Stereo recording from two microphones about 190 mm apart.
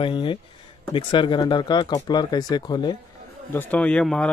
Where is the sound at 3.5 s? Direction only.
10° left (ahead or behind).